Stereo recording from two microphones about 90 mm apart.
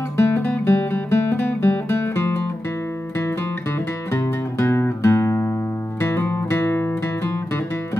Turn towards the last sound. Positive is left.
turn(degrees=30)  # may be behind; listen again after turning